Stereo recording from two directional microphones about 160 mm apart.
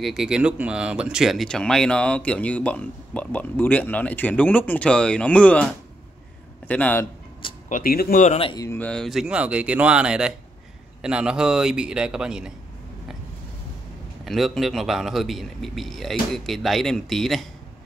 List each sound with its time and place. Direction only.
0.0 s speech: centre (ahead or behind)
6.7 s speech: 10° left (ahead or behind)
7.7 s speech: 65° left (ahead or behind)
8.5 s speech: 15° left (ahead or behind); by 12.5 s 5° right (ahead or behind)
14.2 s speech: centre (ahead or behind)